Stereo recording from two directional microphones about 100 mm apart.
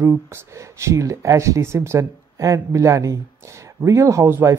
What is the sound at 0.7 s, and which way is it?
Speech, 30° right (ahead or behind).